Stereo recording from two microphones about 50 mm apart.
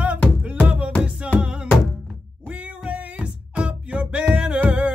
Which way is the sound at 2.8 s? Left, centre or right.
Right.